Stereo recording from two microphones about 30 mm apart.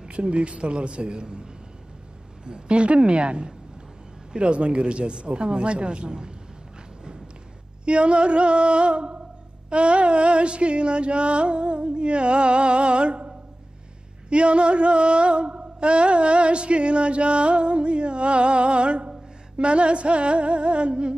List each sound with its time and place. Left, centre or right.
0.1 s music: right
7.8 s music: right
14.3 s music: right